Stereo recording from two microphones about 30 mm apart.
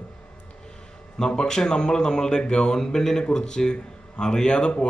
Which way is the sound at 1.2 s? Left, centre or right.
Left.